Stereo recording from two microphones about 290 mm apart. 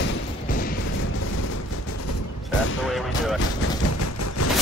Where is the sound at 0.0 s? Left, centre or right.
Left.